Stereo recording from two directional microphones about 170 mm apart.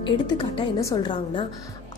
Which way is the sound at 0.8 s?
20° left (ahead or behind).